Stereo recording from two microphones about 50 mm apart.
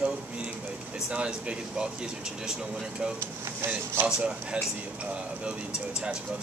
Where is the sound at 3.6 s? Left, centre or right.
Right.